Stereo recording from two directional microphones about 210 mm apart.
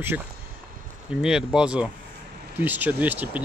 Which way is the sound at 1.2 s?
5° right (ahead or behind).